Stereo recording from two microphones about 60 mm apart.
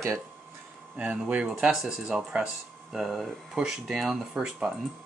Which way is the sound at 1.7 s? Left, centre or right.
Centre.